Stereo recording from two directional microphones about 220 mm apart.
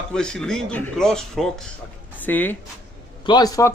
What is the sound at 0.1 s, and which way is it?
A man's voice, 5° left (ahead or behind).